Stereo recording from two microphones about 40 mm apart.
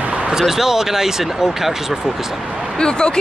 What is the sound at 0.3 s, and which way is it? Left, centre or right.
Speech, centre.